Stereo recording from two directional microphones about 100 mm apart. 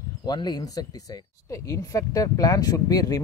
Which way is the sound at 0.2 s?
45° left (ahead or behind).